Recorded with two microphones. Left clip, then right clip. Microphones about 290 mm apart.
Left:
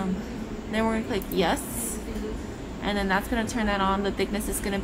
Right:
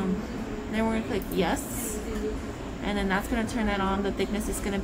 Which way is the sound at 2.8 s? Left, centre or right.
Centre.